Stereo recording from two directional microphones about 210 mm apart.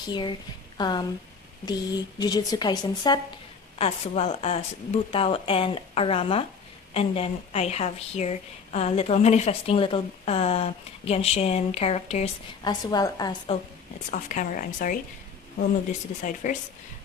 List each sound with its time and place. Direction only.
0.0 s a woman's voice: 20° left (ahead or behind)
12.8 s a woman's voice: 20° left (ahead or behind)
14.1 s speech: 40° left (ahead or behind)
16.4 s speech: 35° left (ahead or behind)